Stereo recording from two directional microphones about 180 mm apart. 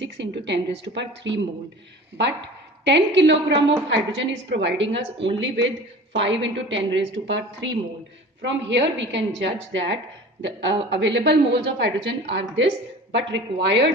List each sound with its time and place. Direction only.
0.0 s speech: 75° right (ahead or behind)
2.8 s a woman's voice: 80° right
8.4 s a woman's voice: 85° right
10.4 s a woman's voice: 80° right